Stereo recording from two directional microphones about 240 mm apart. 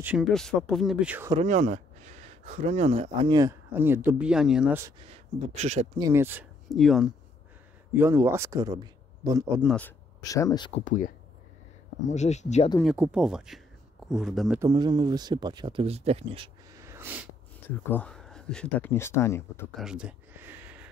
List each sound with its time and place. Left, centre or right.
0.0 s speech: centre
1.3 s speech: right; by 4.9 s centre
5.0 s speech: right
5.9 s speech: centre
9.8 s speech: centre
10.8 s speech: left
12.1 s speech: left
12.9 s speech: centre
14.6 s speech: centre
16.7 s snort: centre
17.6 s speech: centre
19.8 s a sound: centre